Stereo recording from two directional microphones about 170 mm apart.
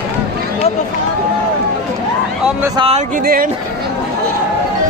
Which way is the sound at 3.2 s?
55° right (ahead or behind).